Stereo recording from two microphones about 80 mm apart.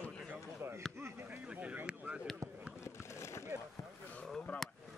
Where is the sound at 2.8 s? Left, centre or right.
Left.